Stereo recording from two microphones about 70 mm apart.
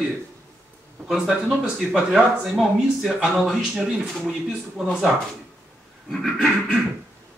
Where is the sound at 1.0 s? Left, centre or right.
Centre.